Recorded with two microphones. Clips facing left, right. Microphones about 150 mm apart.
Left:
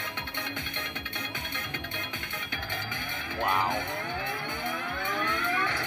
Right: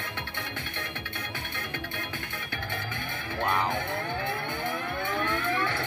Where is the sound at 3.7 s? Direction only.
15° left (ahead or behind).